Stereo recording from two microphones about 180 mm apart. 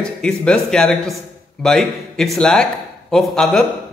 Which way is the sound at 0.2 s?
5° left (ahead or behind).